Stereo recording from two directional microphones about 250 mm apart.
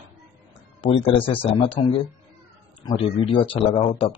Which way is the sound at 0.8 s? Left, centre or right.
Left.